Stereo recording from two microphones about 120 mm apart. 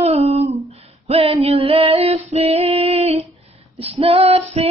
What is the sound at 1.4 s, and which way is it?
Female singing, 55° right (ahead or behind).